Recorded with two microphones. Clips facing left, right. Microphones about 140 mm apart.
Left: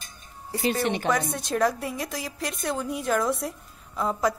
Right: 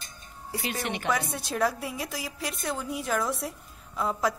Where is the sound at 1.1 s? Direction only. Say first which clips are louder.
Left 4 dB; 5° right (ahead or behind).